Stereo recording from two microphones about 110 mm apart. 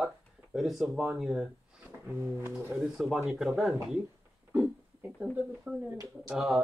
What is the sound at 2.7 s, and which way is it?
Speech, 5° right (ahead or behind).